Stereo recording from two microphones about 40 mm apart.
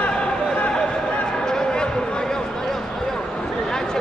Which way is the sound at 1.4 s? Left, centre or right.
Centre.